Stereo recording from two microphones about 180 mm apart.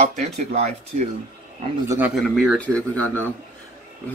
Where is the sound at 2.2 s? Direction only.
Centre (ahead or behind).